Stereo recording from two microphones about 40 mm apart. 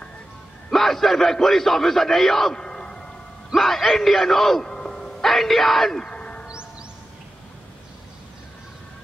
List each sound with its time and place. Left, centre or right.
0.7 s a man's voice: centre
2.6 s music: centre
3.5 s a man's voice: centre
4.6 s a sound: centre
5.2 s a man's voice: centre
6.0 s a sound: left